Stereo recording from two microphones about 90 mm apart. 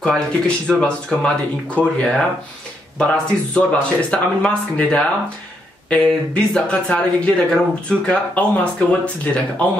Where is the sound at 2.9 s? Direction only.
10° left (ahead or behind).